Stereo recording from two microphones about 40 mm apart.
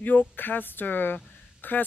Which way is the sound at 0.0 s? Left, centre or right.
Left.